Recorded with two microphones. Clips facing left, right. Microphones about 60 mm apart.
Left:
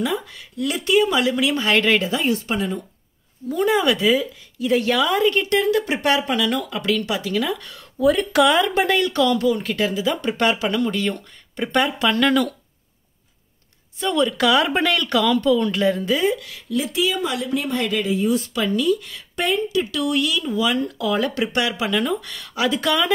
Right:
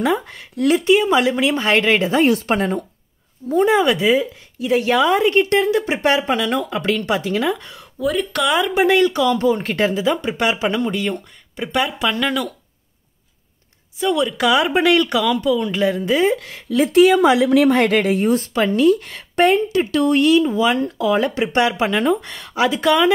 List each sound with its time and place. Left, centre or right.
0.0 s a woman's voice: right
2.2 s speech: right
2.5 s a woman's voice: right
3.4 s a woman's voice: right
8.0 s speech: centre
8.5 s speech: centre
9.3 s a woman's voice: right; by 12.5 s centre
13.9 s speech: centre
16.0 s speech: right
16.6 s speech: right